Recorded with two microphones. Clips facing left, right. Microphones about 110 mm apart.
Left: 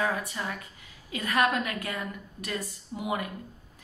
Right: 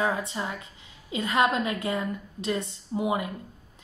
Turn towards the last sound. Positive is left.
turn(degrees=-25)  # may be behind; listen again after turning